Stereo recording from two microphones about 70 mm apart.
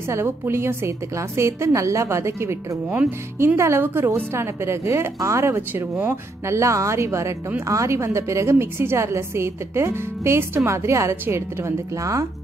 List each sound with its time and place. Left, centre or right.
0.1 s a woman's voice: right